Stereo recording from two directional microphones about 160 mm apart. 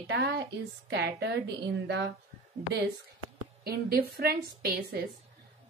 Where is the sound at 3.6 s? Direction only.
75° right (ahead or behind).